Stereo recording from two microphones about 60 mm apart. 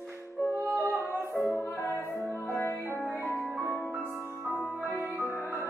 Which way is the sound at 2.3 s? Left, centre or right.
Left.